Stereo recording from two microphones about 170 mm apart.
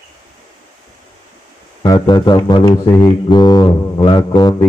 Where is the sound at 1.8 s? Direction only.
25° left (ahead or behind).